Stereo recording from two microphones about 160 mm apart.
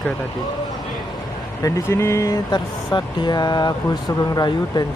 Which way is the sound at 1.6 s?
15° left (ahead or behind).